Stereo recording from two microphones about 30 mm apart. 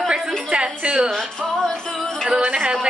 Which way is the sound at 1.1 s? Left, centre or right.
Centre.